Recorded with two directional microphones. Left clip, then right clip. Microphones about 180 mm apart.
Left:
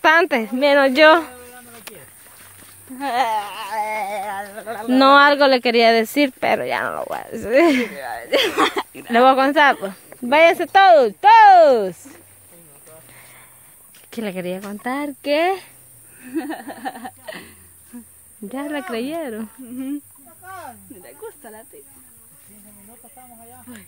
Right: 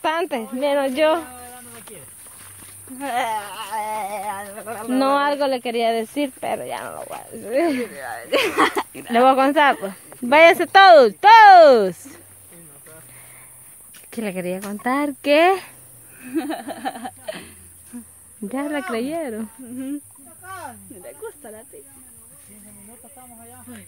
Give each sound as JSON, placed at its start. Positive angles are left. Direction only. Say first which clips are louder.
{"t": 0.0, "sound": "speech", "louder": "left 8 dB", "side_deg": 40}
{"t": 3.0, "sound": "a sound", "louder": "left 3 dB", "side_deg": 60}
{"t": 4.8, "sound": "speech", "louder": "left 7 dB", "side_deg": 35}
{"t": 9.1, "sound": "speech", "louder": "left 1 dB", "side_deg": 20}
{"t": 10.2, "sound": "speech", "louder": "right 1 dB", "side_deg": 5}
{"t": 13.1, "sound": "a sound", "louder": "left 2 dB", "side_deg": 20}
{"t": 14.1, "sound": "speech", "louder": "even", "side_deg": 15}
{"t": 20.4, "sound": "snake", "louder": "right 1 dB", "side_deg": 0}
{"t": 21.0, "sound": "a sound", "louder": "right 2 dB", "side_deg": 55}